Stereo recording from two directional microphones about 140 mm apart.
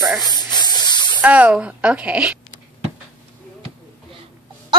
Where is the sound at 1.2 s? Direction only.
10° right (ahead or behind).